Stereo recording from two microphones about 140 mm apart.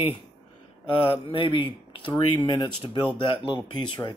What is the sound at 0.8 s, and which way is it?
Speech, 40° left (ahead or behind).